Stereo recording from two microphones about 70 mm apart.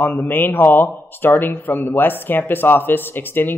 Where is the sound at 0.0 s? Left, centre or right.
Left.